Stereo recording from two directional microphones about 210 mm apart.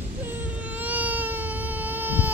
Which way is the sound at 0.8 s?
10° right (ahead or behind).